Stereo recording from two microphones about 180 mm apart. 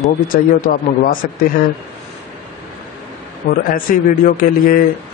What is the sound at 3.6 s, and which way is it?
A man's voice, 50° left (ahead or behind).